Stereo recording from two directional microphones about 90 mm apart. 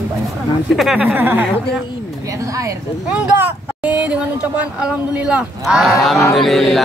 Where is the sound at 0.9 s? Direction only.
20° right (ahead or behind).